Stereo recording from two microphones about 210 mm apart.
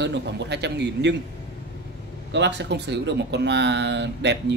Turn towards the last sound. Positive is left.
turn(degrees=-55)  # may be behind; listen again after turning